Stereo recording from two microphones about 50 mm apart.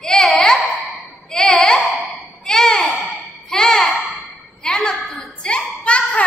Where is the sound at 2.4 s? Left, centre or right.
Centre.